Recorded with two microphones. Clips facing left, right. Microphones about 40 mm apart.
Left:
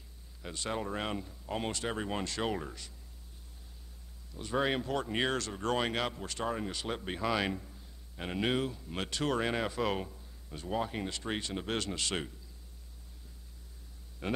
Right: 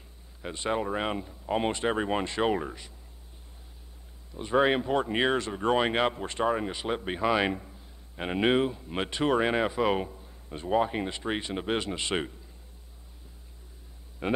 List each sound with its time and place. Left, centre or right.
0.4 s speech: right
4.3 s speech: right
14.2 s speech: right